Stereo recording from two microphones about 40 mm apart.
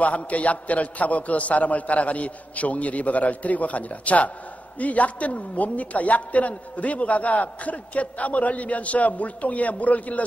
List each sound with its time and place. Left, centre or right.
0.0 s a woman's voice: left